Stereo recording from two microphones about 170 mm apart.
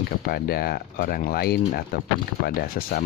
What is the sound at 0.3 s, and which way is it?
Speech, 65° left (ahead or behind).